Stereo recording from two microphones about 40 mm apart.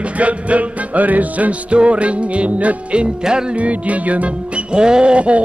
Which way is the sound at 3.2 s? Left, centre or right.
Centre.